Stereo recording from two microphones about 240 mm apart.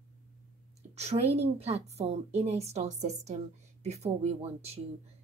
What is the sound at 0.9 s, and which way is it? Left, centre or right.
Speech, right.